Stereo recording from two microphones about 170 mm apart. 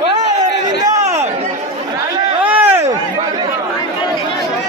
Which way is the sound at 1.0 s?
40° right (ahead or behind).